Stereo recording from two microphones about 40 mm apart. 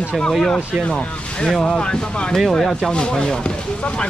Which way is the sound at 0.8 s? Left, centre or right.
Left.